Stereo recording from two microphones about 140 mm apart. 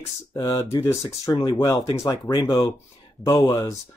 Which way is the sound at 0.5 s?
45° left (ahead or behind).